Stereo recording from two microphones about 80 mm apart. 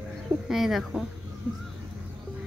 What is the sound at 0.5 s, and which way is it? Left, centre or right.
Music, centre.